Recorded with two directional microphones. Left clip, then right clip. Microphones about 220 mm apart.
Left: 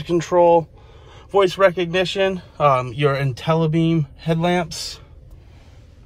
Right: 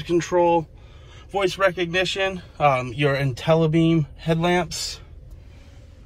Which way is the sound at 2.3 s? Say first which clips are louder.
Left 3 dB; 15° left (ahead or behind).